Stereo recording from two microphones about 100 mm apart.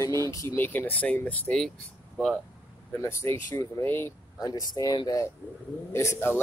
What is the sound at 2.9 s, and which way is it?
Speech, 25° left (ahead or behind).